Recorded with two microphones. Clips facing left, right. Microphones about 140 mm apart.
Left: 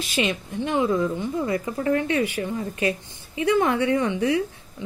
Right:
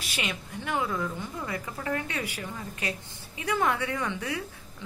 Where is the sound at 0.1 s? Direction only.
25° left (ahead or behind).